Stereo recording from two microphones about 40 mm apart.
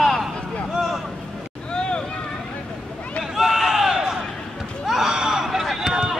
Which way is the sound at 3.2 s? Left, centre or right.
Centre.